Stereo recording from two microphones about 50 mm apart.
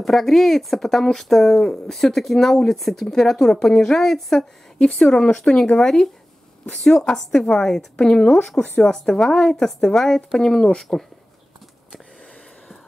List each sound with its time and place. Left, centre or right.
0.0 s speech: centre
4.7 s speech: centre